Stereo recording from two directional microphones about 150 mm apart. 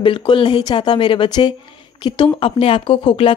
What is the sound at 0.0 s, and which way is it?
Speech, 35° left (ahead or behind).